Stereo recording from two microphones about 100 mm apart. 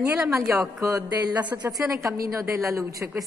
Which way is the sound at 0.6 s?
30° right (ahead or behind).